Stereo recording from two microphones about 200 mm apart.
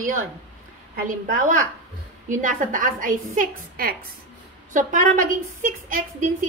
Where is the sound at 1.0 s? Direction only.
40° right (ahead or behind).